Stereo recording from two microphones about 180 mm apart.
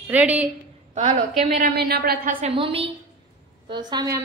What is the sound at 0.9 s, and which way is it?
Speech, 35° right (ahead or behind).